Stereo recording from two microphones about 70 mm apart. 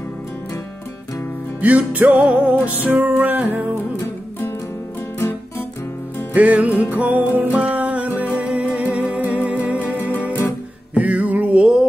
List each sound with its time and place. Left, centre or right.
1.6 s music: right
6.3 s music: right
9.8 s music: left
11.0 s music: right